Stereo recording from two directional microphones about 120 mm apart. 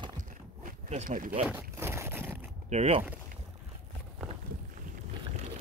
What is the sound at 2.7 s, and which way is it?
Speech, 70° right (ahead or behind).